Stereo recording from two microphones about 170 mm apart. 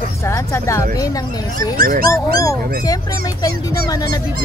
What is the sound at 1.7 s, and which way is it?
Speech, 55° right (ahead or behind).